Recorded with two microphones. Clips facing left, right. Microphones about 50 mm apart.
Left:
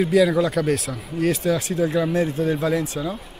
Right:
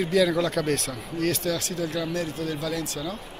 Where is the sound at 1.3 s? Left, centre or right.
Centre.